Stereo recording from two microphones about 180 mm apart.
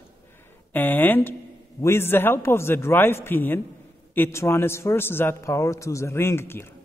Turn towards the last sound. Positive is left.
turn(degrees=15)  # may be behind; listen again after turning